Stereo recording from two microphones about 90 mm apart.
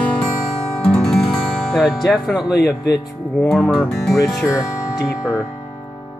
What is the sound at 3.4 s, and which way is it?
Speech, 5° left (ahead or behind).